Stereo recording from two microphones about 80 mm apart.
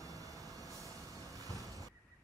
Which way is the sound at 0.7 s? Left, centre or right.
Left.